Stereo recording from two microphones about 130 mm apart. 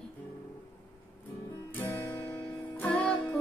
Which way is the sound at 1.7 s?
15° left (ahead or behind).